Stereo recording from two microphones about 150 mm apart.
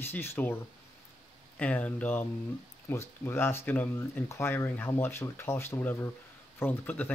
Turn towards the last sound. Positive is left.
turn(degrees=15)  # may be behind; listen again after turning